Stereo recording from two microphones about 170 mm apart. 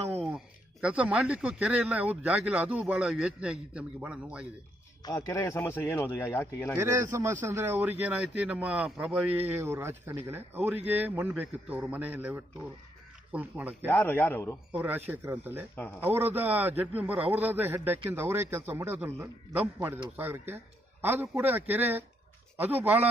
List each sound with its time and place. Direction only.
0.3 s speech: 5° right (ahead or behind)
5.0 s speech: 20° left (ahead or behind)
6.8 s speech: 15° right (ahead or behind)
9.6 s speech: 15° right (ahead or behind)
13.8 s speech: 10° left (ahead or behind)
14.7 s speech: 10° right (ahead or behind)
15.7 s speech: 10° left (ahead or behind)
16.1 s speech: 10° right (ahead or behind)